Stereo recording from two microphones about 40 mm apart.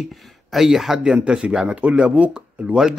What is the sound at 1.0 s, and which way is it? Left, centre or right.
Speech, right.